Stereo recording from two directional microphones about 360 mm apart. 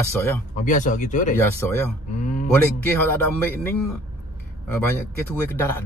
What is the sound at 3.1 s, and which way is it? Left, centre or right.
Speech, centre.